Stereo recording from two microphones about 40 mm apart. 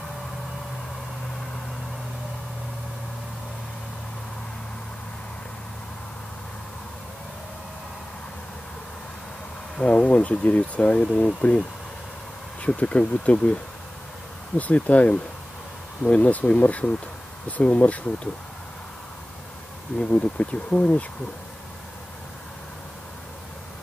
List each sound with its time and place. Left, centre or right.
9.8 s speech: left
12.6 s speech: left
14.6 s speech: left
20.1 s speech: left